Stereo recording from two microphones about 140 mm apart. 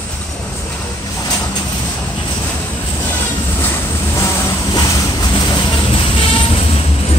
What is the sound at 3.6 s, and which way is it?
Vehicle, 20° left (ahead or behind).